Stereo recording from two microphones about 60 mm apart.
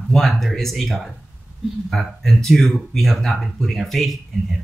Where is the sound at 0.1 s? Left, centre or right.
Centre.